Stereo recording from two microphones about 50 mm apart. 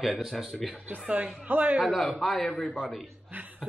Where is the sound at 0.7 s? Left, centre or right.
Right.